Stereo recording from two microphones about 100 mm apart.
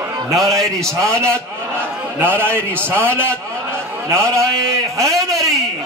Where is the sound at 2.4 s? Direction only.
20° right (ahead or behind).